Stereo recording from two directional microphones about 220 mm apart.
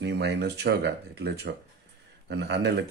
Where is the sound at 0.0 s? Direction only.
50° right (ahead or behind).